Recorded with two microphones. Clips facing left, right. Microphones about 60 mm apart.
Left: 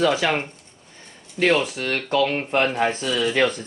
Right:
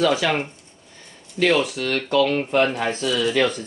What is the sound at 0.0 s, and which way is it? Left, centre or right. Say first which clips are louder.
Speech: even; left.